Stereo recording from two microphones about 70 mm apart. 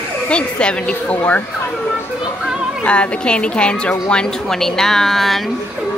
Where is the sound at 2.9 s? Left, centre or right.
Centre.